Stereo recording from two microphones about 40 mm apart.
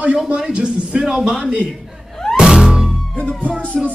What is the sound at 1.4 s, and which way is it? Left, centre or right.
Speech, right.